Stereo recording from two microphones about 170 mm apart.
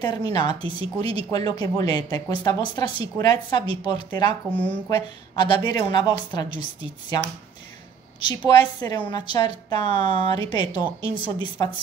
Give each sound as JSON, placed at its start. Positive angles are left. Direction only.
{"t": 0.0, "sound": "speech", "side_deg": 25}
{"t": 8.5, "sound": "speech", "side_deg": 25}